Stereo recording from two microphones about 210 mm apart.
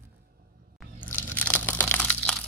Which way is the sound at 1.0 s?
10° left (ahead or behind).